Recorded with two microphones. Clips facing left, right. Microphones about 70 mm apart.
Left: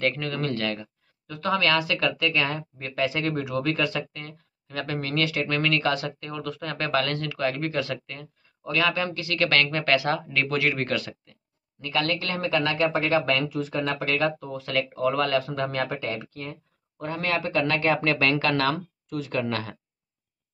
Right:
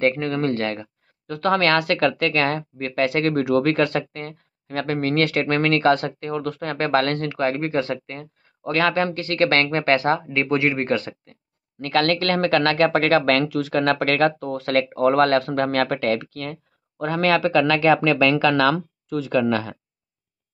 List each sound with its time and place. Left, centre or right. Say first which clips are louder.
0.0 s speech: right 6 dB; right
1.2 s speech: right 5 dB; right
8.5 s speech: right 4 dB; right
11.8 s speech: right 7 dB; right
17.0 s a man's voice: right 8 dB; right